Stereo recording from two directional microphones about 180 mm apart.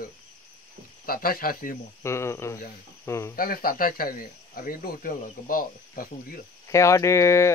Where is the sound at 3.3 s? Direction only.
55° left (ahead or behind).